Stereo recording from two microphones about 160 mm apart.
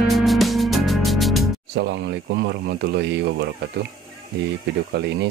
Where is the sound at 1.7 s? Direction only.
90° right.